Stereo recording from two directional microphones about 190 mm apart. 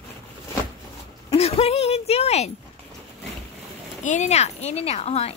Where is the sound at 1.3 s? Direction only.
30° left (ahead or behind).